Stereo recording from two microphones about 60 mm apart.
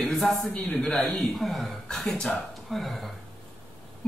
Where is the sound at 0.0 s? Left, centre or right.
Centre.